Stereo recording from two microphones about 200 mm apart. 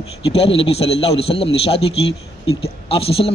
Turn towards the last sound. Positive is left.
turn(degrees=30)  # may be behind; listen again after turning